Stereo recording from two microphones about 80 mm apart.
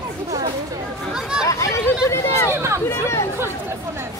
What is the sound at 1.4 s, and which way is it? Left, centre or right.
Chatter, left.